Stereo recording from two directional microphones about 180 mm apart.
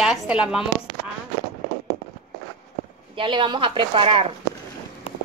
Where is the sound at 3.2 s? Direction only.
25° right (ahead or behind).